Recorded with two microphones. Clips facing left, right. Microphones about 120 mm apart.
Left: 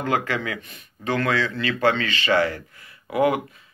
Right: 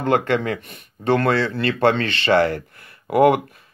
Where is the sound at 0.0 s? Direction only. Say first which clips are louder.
Right 5 dB; 55° right (ahead or behind).